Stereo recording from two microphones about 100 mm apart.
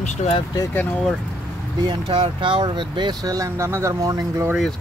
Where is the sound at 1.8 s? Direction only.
55° right (ahead or behind); by 4.4 s 35° right (ahead or behind).